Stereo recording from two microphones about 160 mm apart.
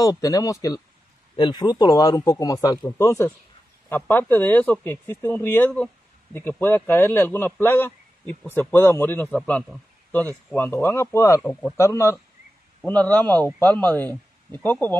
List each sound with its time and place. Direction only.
0.0 s a man's voice: 25° left (ahead or behind)